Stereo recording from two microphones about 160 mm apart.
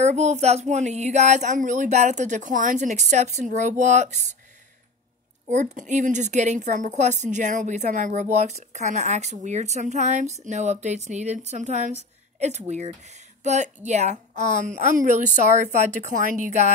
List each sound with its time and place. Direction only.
0.0 s a woman's voice: 45° right (ahead or behind)
5.5 s a woman's voice: 45° right (ahead or behind)